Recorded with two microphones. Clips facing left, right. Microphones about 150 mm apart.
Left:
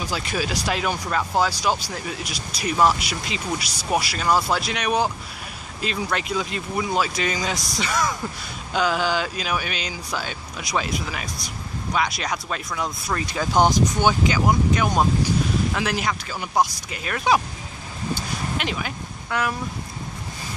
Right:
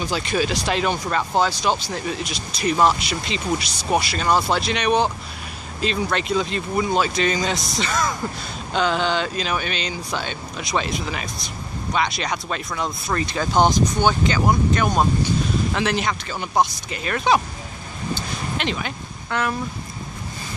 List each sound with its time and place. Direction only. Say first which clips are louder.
0.0 s speech: right 4 dB; 5° left (ahead or behind)
18.6 s speech: right 2 dB; 10° left (ahead or behind)